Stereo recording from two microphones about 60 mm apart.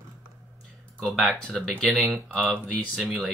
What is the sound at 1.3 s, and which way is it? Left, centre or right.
Speech, centre.